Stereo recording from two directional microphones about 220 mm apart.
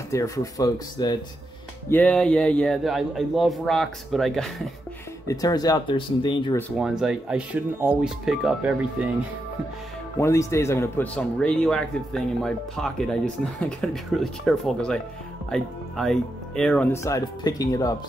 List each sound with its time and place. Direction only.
0.1 s speech: 15° left (ahead or behind)
1.9 s speech: 5° left (ahead or behind)
5.3 s speech: 15° left (ahead or behind)
6.8 s speech: centre (ahead or behind)
10.2 s speech: 15° left (ahead or behind)